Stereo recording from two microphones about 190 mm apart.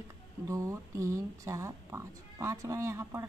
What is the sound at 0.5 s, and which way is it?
A woman's voice, 15° right (ahead or behind).